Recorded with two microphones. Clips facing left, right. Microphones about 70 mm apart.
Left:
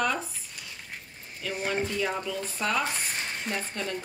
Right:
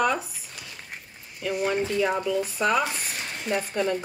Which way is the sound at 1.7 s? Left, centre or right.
Centre.